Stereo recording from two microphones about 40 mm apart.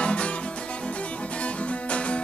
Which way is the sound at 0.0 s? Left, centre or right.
Left.